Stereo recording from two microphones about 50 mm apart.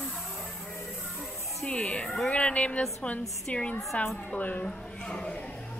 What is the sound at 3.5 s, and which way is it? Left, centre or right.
A woman's voice, left.